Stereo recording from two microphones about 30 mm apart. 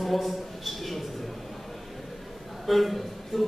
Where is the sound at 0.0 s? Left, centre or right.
Centre.